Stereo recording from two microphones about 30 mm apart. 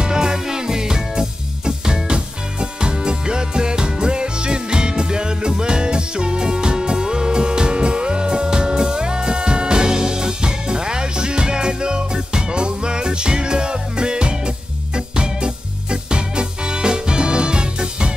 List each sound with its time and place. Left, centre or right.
0.0 s music: right